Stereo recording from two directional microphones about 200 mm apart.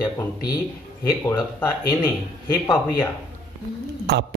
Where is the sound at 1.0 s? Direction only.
15° left (ahead or behind).